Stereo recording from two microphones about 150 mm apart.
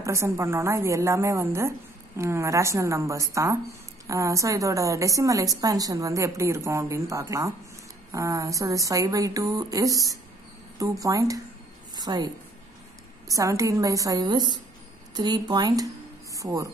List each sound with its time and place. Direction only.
0.0 s a woman's voice: 20° right (ahead or behind)
11.9 s a sound: 30° right (ahead or behind)
13.3 s a woman's voice: 20° right (ahead or behind)